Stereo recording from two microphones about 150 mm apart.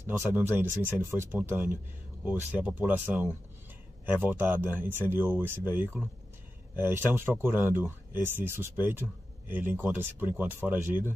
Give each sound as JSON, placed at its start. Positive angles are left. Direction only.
{"t": 0.2, "sound": "speech", "side_deg": -15}